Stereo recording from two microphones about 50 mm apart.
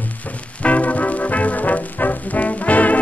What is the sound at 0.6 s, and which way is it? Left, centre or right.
Music, left.